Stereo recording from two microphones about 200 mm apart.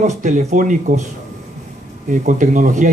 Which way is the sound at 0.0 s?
35° right (ahead or behind).